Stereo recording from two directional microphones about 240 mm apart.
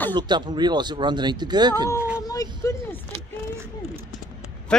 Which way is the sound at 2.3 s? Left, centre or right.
Centre.